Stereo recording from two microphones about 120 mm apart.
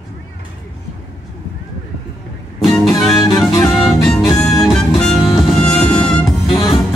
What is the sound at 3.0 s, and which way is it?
Music, 5° left (ahead or behind).